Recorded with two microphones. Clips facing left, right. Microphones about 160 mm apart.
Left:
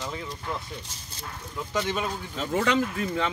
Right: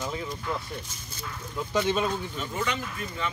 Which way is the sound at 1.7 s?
20° right (ahead or behind).